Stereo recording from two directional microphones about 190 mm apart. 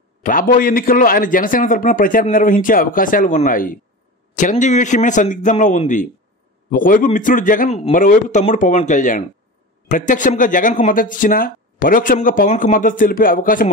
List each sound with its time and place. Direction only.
0.2 s a man's voice: 45° left (ahead or behind)